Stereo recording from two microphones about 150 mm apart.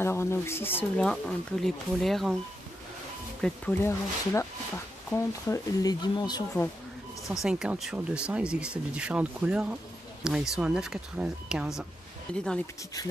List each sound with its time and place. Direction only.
0.0 s speech: 15° left (ahead or behind); by 2.3 s centre (ahead or behind)
3.3 s speech: 5° left (ahead or behind)
3.8 s speech: 15° left (ahead or behind)
7.4 s speech: 5° right (ahead or behind)
12.3 s speech: 5° left (ahead or behind)